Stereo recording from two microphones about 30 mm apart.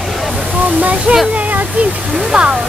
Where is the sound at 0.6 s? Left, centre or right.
Right.